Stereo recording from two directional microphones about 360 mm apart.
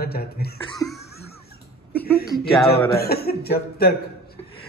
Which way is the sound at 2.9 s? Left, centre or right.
Left.